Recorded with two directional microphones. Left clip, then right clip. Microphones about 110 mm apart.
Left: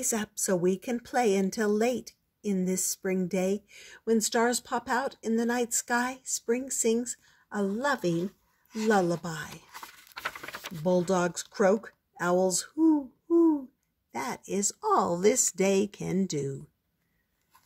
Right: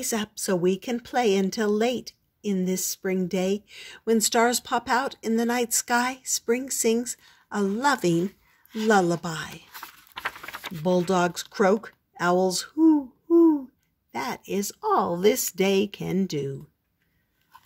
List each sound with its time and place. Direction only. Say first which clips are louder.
0.0 s speech: right 2 dB; 5° right (ahead or behind); by 7.8 s 20° right (ahead or behind)
7.8 s speech: right 7 dB; 35° right (ahead or behind)
8.7 s speech: right 4 dB; 20° right (ahead or behind); by 16.4 s centre (ahead or behind)